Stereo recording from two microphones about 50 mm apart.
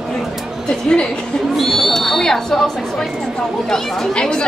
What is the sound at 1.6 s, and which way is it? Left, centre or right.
Speech, centre.